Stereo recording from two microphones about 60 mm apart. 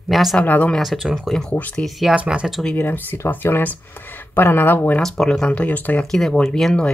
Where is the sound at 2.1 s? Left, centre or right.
Centre.